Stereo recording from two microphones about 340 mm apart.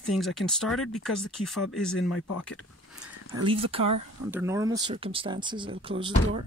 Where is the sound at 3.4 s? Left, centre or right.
Centre.